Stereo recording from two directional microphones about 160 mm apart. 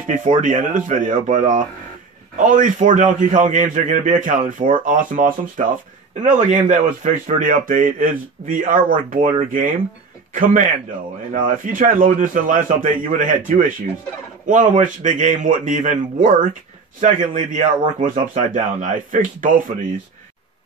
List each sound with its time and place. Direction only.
0.0 s a man's voice: 55° right (ahead or behind)